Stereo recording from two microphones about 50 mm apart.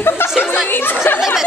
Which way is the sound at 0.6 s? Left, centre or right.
Left.